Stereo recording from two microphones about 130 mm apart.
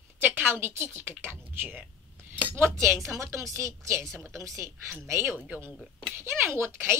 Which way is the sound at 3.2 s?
20° right (ahead or behind).